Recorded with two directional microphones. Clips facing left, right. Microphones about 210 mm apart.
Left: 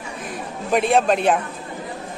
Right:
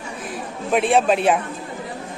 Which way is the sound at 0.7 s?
Centre (ahead or behind).